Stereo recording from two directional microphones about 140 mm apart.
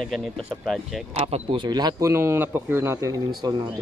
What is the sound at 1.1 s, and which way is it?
Speech, 45° right (ahead or behind).